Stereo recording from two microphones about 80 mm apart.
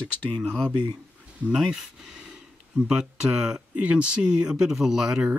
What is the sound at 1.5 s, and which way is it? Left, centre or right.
Speech, centre.